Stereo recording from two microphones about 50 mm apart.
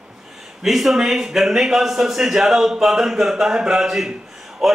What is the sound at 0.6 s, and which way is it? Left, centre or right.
A man's voice, centre.